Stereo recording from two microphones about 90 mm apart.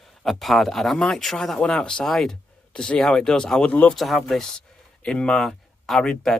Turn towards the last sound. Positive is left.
turn(degrees=10)  # may be behind; listen again after turning